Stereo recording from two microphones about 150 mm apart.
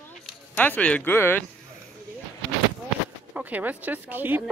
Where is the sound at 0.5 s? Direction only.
10° left (ahead or behind).